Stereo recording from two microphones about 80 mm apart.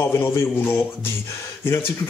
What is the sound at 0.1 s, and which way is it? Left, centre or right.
Speech, left.